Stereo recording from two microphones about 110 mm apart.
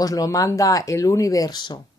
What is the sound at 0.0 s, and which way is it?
Speech, 30° left (ahead or behind).